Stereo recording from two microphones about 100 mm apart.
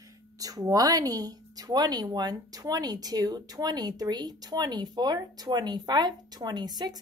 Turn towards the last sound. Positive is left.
turn(degrees=-45)  # may be behind; listen again after turning